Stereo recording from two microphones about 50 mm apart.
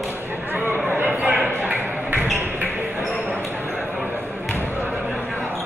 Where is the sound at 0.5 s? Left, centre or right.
Right.